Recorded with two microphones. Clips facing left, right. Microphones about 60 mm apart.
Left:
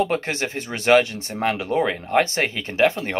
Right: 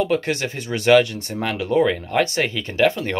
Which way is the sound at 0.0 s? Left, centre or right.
Left.